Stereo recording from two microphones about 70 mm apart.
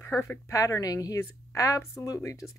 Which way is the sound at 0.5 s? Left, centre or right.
Left.